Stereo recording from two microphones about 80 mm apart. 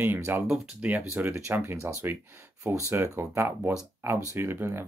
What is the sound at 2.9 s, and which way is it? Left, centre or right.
Speech, right.